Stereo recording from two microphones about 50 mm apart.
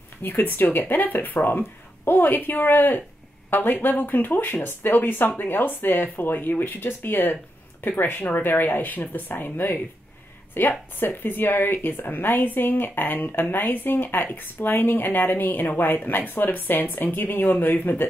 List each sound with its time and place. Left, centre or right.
0.2 s a woman's voice: left